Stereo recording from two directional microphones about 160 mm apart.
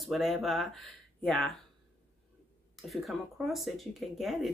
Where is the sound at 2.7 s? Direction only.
Centre (ahead or behind).